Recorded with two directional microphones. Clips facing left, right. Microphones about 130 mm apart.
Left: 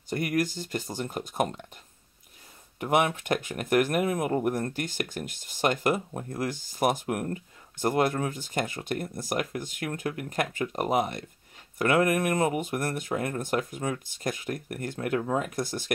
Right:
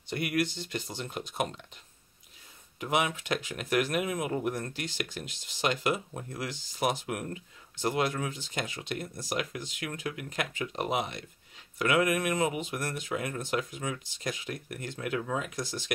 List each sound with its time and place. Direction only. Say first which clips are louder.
0.1 s speech: left 3 dB; 40° left (ahead or behind)
2.8 s speech: left 5 dB; 50° left (ahead or behind)